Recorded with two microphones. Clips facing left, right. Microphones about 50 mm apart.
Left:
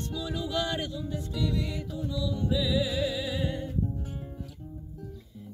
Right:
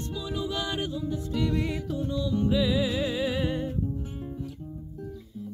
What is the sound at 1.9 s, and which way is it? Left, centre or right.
Music, right.